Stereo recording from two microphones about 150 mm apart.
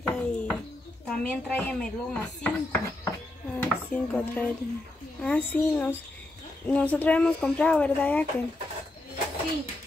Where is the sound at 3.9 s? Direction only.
10° left (ahead or behind).